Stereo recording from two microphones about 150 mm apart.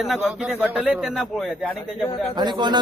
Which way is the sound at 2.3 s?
30° right (ahead or behind).